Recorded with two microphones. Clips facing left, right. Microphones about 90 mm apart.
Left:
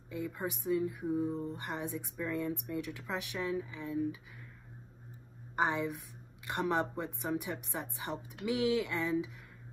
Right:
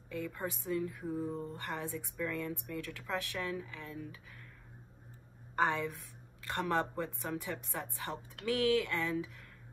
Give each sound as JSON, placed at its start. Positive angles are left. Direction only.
{"t": 0.1, "sound": "speech", "side_deg": 15}
{"t": 5.6, "sound": "speech", "side_deg": 15}